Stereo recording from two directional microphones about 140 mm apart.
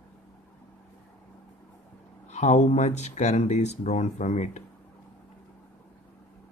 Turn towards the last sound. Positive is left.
turn(degrees=55)  # may be behind; listen again after turning